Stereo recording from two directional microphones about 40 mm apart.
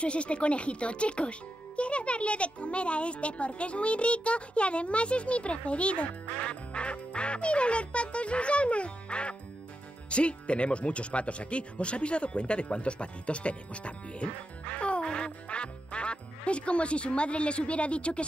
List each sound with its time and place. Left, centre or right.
0.0 s speech: left